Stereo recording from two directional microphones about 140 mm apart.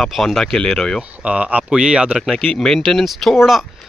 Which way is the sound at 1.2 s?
10° right (ahead or behind).